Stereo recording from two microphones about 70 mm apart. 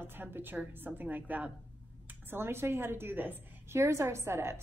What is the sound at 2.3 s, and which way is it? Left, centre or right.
A woman's voice, right.